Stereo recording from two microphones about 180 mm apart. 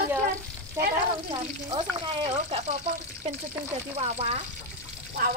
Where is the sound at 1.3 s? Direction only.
25° right (ahead or behind).